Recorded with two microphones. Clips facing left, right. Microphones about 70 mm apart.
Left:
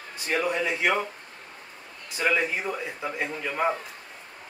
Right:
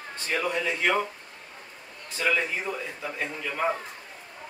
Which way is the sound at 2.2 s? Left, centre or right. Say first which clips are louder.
Left 1 dB; centre.